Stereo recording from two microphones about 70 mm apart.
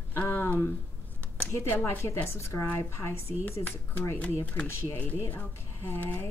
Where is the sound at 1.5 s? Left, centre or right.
Left.